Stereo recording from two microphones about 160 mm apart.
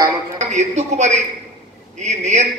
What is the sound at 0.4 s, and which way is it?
A man's voice, 45° right (ahead or behind).